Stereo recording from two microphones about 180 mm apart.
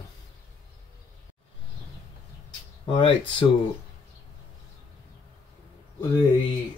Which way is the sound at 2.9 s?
30° left (ahead or behind).